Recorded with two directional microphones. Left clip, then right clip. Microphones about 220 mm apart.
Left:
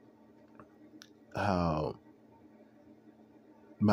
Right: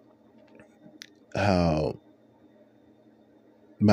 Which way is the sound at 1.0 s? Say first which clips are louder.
Right 7 dB; 15° right (ahead or behind).